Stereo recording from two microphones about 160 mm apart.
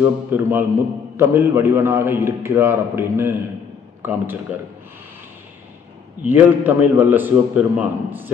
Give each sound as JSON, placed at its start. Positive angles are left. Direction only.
{"t": 0.0, "sound": "a man's voice", "side_deg": -15}
{"t": 6.2, "sound": "a man's voice", "side_deg": -10}